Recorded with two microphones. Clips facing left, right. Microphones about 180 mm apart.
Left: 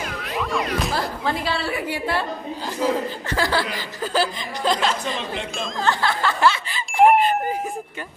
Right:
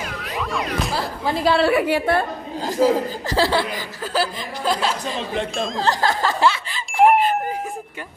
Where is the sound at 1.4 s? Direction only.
60° right (ahead or behind); by 2.1 s 75° right (ahead or behind).